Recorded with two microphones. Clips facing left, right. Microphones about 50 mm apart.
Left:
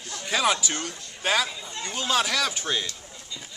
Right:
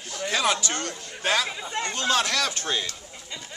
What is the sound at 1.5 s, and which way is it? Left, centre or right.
Speech, right.